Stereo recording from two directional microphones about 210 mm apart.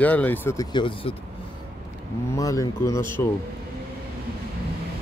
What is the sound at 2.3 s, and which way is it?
Speech, 15° left (ahead or behind).